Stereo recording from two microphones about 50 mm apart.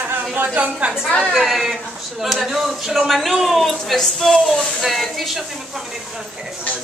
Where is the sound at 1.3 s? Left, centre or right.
Centre.